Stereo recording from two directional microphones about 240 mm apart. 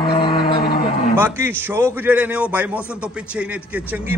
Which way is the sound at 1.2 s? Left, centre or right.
Centre.